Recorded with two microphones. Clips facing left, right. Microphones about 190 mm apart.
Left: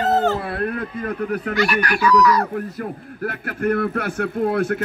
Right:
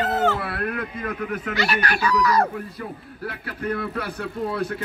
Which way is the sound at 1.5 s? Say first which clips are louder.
Left 3 dB; 25° right (ahead or behind).